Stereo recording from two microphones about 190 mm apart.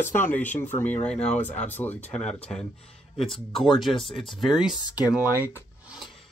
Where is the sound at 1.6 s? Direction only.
10° left (ahead or behind).